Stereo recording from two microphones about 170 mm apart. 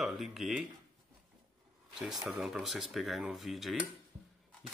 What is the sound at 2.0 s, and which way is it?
A man's voice, centre (ahead or behind).